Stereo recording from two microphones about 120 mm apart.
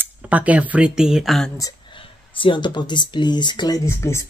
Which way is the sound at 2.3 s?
45° left (ahead or behind).